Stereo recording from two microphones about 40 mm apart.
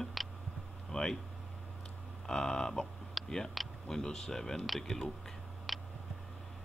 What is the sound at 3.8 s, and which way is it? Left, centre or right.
Speech, centre.